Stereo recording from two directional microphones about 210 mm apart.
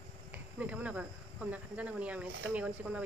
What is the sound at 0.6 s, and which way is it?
A woman's voice, 5° right (ahead or behind).